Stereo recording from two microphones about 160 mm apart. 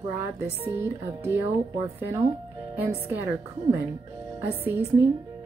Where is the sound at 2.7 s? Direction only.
10° right (ahead or behind).